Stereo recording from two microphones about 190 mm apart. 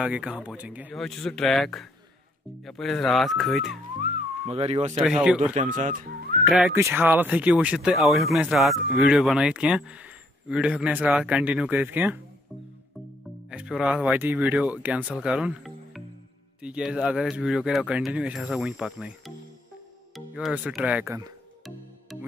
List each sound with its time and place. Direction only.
0.0 s speech: 5° right (ahead or behind)
0.9 s speech: centre (ahead or behind)
4.0 s speech: 30° right (ahead or behind)
5.0 s speech: 5° right (ahead or behind)
5.5 s speech: 40° right (ahead or behind)
6.4 s speech: 5° right (ahead or behind)
13.5 s speech: 5° right (ahead or behind)
20.3 s speech: 5° right (ahead or behind)